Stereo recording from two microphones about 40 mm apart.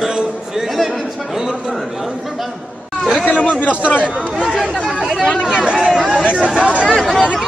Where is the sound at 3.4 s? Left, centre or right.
Left.